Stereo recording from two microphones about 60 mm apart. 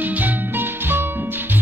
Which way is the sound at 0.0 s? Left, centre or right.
Right.